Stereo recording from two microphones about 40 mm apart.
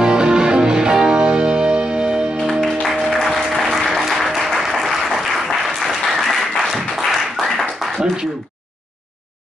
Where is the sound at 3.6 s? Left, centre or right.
Centre.